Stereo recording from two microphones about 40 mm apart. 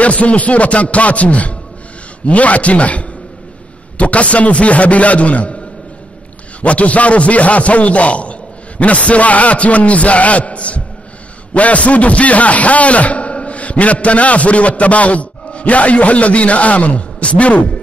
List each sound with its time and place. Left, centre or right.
0.0 s a man's voice: left
6.6 s a man's voice: left